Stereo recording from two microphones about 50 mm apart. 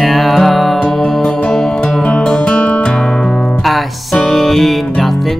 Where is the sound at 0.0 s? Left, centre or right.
Centre; by 2.9 s left.